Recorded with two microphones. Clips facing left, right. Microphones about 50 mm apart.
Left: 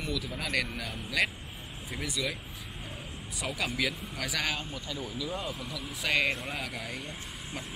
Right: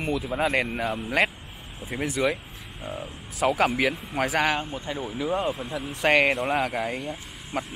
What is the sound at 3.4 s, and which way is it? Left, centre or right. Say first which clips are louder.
Speech: right 10 dB; right.